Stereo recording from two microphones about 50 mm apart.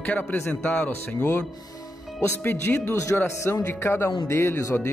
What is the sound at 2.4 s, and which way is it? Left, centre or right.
Speech, left.